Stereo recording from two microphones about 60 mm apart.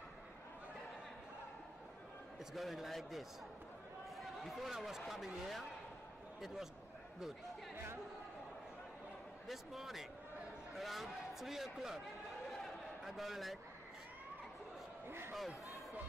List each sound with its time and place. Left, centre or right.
2.5 s speech: centre
9.5 s speech: centre
12.6 s a sound: centre
15.0 s speech: right